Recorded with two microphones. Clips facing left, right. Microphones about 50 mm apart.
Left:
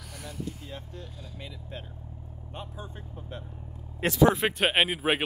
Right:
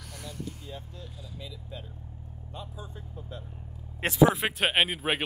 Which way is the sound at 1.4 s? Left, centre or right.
Left.